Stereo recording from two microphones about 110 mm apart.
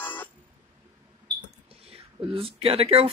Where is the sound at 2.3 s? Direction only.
60° right (ahead or behind).